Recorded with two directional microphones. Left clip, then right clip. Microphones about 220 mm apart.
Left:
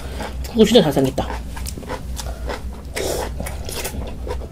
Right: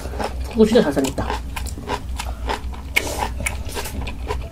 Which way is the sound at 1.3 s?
40° right (ahead or behind).